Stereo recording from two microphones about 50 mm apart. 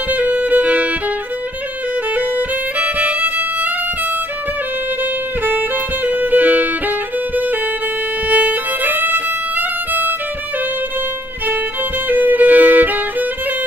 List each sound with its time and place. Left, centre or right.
0.1 s music: right
2.1 s violin: right
6.0 s music: right
8.3 s violin: right
12.1 s music: right